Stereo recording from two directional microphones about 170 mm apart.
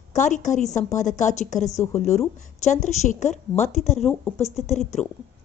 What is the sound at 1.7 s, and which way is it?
Speech, 15° left (ahead or behind).